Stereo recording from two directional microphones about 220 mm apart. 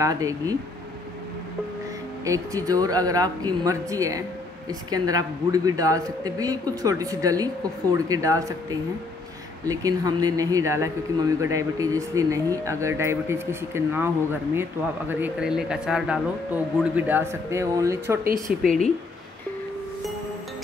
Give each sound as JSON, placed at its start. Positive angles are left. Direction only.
{"t": 0.0, "sound": "speech", "side_deg": -15}
{"t": 2.2, "sound": "speech", "side_deg": -15}